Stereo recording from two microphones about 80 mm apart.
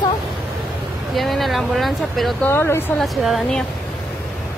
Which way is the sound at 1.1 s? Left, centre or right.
Centre.